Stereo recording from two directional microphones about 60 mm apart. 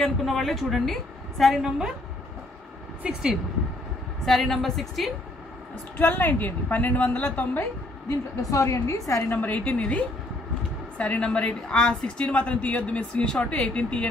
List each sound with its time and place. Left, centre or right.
0.0 s speech: centre
3.0 s speech: centre
4.3 s speech: centre
5.9 s a woman's voice: left
8.4 s a woman's voice: left
9.4 s a woman's voice: left